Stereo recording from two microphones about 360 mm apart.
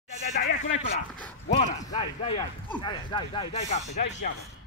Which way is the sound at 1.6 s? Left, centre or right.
Centre.